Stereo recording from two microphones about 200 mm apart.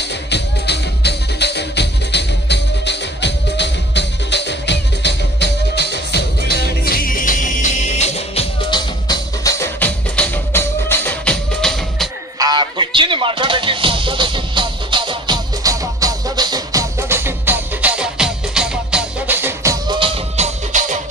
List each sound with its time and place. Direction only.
0.0 s music: 60° left (ahead or behind); by 12.1 s centre (ahead or behind)
12.4 s music: 20° right (ahead or behind)